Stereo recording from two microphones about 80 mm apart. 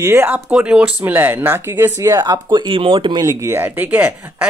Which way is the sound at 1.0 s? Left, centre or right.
Right.